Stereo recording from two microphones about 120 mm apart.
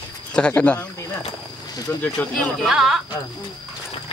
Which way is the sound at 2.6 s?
5° right (ahead or behind).